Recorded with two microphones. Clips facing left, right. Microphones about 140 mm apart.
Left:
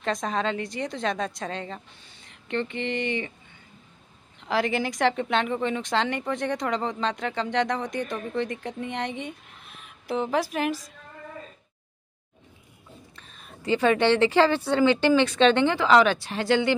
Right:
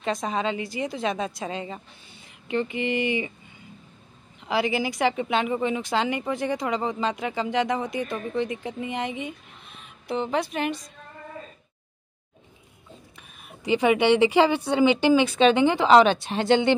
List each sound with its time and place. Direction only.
0.0 s speech: 5° right (ahead or behind)
4.4 s speech: centre (ahead or behind)
13.1 s a woman's voice: 10° right (ahead or behind)